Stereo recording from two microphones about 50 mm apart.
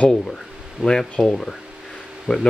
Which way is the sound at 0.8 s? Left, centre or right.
Centre.